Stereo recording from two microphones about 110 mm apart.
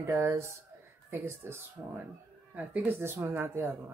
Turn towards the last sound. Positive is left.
turn(degrees=-20)  # may be behind; listen again after turning